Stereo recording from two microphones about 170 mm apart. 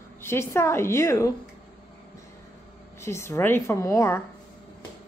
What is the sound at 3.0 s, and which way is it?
A woman's voice, 15° left (ahead or behind).